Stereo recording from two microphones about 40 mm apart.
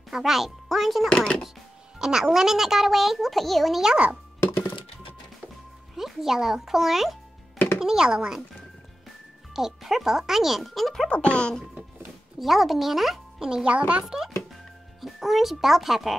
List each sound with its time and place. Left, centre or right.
0.1 s a child's voice: centre
1.0 s speech: centre
2.0 s music: centre
2.3 s a child's voice: centre
3.8 s a child's voice: right
5.9 s speech: centre
9.6 s speech: centre
11.1 s speech: left
12.4 s a child's voice: centre
13.4 s a child's voice: centre
13.7 s speech: right
14.0 s a child's voice: centre